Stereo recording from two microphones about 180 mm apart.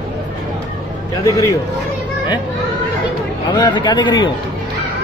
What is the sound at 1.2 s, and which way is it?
Speech, 20° left (ahead or behind).